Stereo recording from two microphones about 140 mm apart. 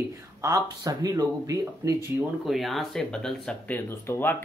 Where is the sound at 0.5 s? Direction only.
25° right (ahead or behind).